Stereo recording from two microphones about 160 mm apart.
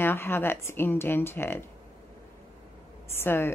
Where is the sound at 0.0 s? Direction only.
15° left (ahead or behind).